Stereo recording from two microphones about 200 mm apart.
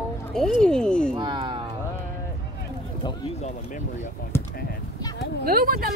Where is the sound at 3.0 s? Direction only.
20° left (ahead or behind).